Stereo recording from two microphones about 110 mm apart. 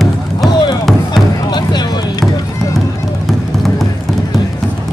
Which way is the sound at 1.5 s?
40° left (ahead or behind).